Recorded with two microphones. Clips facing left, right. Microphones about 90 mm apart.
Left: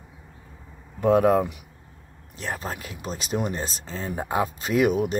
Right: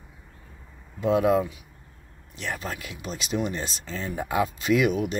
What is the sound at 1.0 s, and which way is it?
Speech, 45° left (ahead or behind).